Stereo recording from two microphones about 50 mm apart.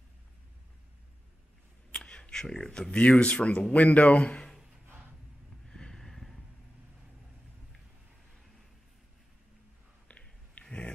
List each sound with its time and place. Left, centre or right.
1.9 s speech: left
5.7 s a sound: centre
10.6 s dog: centre